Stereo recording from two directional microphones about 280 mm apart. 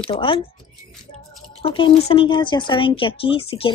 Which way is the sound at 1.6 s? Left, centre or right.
Centre.